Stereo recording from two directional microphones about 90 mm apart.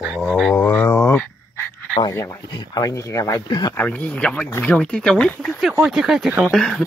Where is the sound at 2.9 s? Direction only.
35° left (ahead or behind).